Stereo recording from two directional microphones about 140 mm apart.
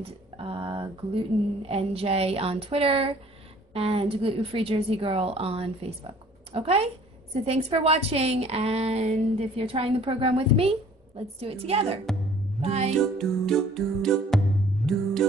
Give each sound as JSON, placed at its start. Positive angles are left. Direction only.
{"t": 0.4, "sound": "a woman's voice", "side_deg": -40}
{"t": 12.9, "sound": "music", "side_deg": 5}